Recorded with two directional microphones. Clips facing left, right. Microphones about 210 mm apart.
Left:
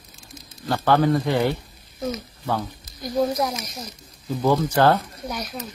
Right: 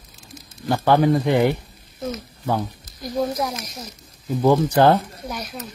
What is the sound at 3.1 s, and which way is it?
Speech, centre (ahead or behind).